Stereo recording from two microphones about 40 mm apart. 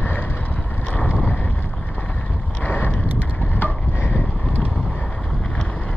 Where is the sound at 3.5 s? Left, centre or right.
Left.